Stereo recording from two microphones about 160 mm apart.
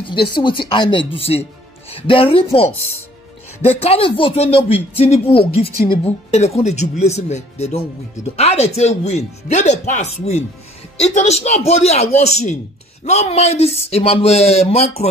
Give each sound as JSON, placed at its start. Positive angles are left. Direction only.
{"t": 0.0, "sound": "speech", "side_deg": 30}
{"t": 3.8, "sound": "speech", "side_deg": 35}